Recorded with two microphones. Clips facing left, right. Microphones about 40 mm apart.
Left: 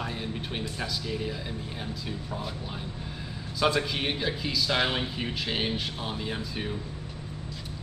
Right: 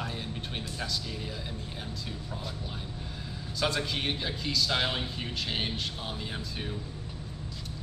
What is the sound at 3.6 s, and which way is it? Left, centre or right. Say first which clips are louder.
Speech: left 4 dB; centre.